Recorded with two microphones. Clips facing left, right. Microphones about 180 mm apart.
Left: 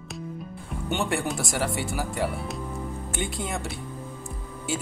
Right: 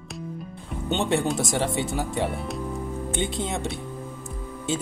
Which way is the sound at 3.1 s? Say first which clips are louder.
Right 3 dB; 20° right (ahead or behind).